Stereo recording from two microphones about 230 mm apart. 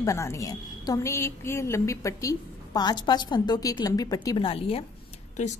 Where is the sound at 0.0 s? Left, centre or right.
Centre.